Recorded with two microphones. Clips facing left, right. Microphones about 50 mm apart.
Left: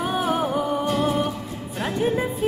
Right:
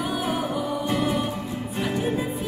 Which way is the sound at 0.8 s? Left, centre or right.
Right.